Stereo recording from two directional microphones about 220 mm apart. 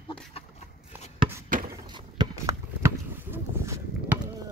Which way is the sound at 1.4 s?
40° right (ahead or behind).